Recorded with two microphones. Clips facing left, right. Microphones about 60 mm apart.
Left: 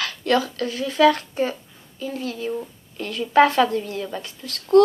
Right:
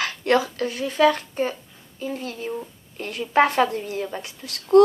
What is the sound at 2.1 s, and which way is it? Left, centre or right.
Speech, right.